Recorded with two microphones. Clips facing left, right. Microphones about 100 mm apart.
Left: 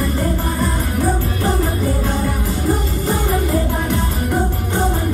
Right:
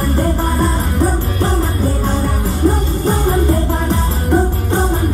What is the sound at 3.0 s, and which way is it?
Music, 30° right (ahead or behind).